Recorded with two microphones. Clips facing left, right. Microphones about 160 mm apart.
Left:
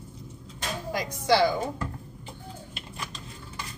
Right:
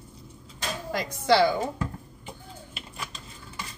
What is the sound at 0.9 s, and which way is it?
Speech, 15° left (ahead or behind).